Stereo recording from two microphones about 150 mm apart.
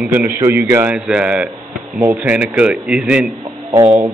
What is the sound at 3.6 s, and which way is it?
Speech, 20° right (ahead or behind).